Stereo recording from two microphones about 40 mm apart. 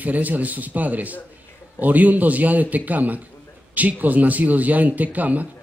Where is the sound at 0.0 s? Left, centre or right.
Right.